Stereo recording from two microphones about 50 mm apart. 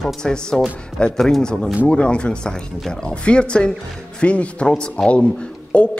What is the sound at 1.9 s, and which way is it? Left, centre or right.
Speech, centre.